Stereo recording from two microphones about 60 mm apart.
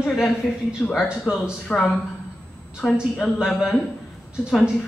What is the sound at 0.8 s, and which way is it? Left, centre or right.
Speech, centre.